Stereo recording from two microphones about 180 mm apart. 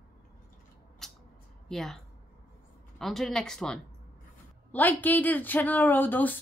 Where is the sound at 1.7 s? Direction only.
Centre (ahead or behind).